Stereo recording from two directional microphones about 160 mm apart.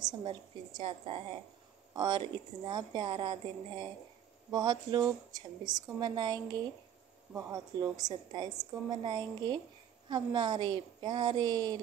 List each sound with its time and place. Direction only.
0.2 s a woman's voice: 30° right (ahead or behind)